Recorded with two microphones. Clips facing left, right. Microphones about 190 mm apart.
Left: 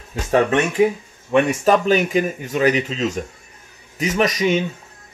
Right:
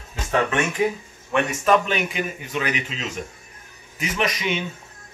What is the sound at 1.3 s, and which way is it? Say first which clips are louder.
Speech: left 4 dB; 35° left (ahead or behind).